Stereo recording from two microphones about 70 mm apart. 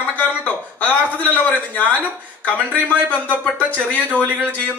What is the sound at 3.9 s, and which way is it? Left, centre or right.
Speech, left.